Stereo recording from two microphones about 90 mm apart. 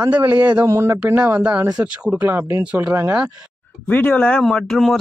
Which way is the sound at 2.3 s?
25° right (ahead or behind).